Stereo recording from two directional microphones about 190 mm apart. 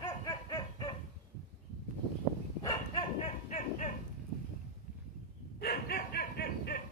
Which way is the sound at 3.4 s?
35° left (ahead or behind).